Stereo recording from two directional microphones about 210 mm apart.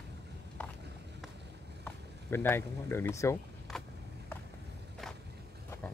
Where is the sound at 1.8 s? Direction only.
10° left (ahead or behind).